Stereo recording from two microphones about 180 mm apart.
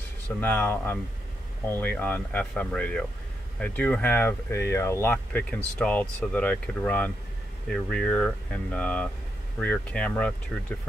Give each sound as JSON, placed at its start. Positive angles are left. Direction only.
{"t": 0.4, "sound": "speech", "side_deg": 10}